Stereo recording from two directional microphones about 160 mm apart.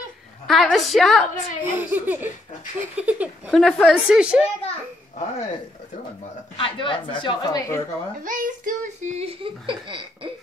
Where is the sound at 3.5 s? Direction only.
5° left (ahead or behind).